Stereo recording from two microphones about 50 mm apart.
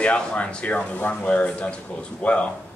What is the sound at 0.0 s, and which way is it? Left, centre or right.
A man's voice, left.